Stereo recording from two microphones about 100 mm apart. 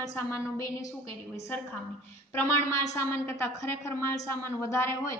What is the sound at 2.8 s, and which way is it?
A woman's voice, 30° left (ahead or behind).